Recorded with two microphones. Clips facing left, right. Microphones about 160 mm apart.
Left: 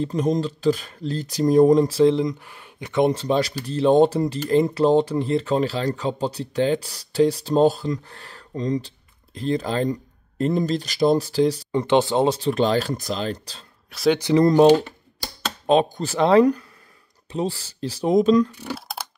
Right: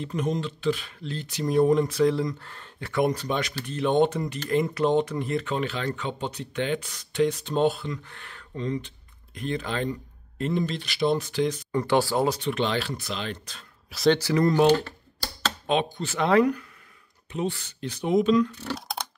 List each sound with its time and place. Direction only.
0.0 s speech: 35° left (ahead or behind)
11.7 s speech: 20° left (ahead or behind)
13.8 s speech: centre (ahead or behind)
14.1 s speech: 20° left (ahead or behind)
14.4 s speech: 35° left (ahead or behind)
14.8 s typewriter: 15° left (ahead or behind)
15.6 s speech: 40° left (ahead or behind)
18.5 s speech: 10° left (ahead or behind)